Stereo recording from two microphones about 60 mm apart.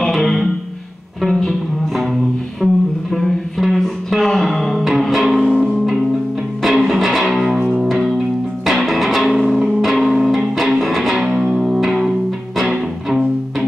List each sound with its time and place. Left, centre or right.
0.0 s music: centre
2.6 s music: centre